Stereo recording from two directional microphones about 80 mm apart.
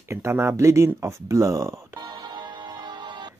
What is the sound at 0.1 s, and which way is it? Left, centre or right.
Speech, right.